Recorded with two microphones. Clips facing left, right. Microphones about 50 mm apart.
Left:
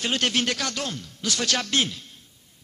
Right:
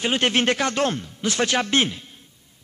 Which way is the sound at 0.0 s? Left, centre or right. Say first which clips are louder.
Right 4 dB; right.